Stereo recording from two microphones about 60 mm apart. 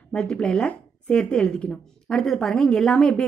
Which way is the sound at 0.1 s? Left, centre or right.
Centre.